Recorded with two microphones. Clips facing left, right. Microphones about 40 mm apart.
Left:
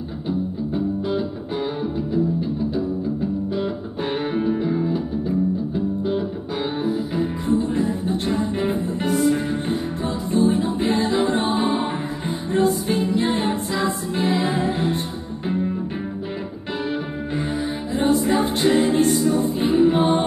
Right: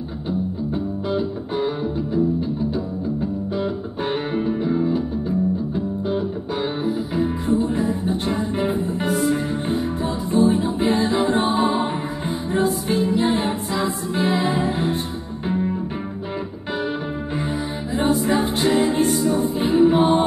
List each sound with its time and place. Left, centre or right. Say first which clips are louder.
1.0 s music: right 1 dB; centre
3.5 s music: right 1 dB; centre
6.0 s music: even; centre
18.0 s music: left 1 dB; centre
18.4 s a capella: left 1 dB; centre